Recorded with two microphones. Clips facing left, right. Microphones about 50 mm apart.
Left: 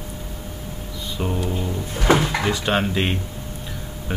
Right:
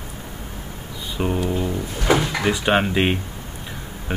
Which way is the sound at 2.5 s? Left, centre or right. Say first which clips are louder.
Right 2 dB; centre.